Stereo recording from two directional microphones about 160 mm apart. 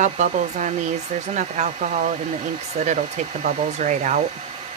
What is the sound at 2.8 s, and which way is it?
Speech, 50° right (ahead or behind).